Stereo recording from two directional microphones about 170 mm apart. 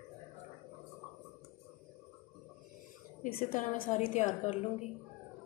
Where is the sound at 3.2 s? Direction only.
55° left (ahead or behind).